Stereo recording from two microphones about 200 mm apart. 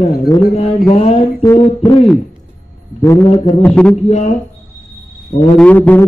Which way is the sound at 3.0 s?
15° left (ahead or behind).